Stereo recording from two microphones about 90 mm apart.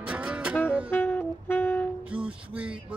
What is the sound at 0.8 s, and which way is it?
Saxophone, 20° left (ahead or behind).